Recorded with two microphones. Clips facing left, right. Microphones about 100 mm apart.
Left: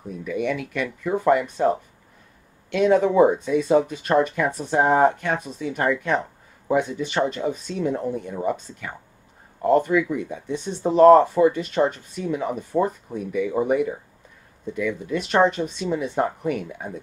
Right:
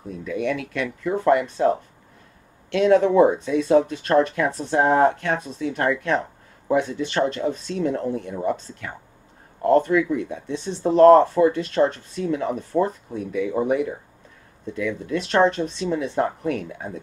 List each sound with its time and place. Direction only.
0.1 s speech: 10° left (ahead or behind)
2.8 s speech: 15° left (ahead or behind)